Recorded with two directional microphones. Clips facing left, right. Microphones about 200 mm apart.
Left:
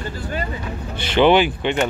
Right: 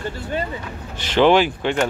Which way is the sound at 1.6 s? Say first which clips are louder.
Even; centre (ahead or behind).